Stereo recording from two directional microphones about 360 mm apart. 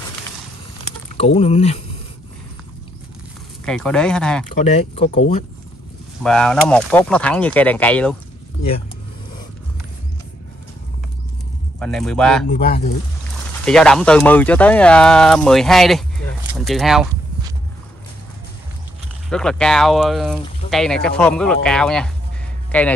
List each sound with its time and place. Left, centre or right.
1.1 s speech: centre
3.6 s speech: centre
4.9 s speech: centre
6.2 s speech: centre
11.8 s speech: centre
12.4 s speech: left
13.7 s speech: centre
19.2 s speech: centre